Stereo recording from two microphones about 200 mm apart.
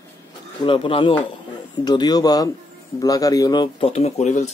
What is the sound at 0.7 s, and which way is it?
Speech, 25° left (ahead or behind).